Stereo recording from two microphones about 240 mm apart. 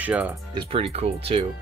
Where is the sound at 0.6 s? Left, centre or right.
Right.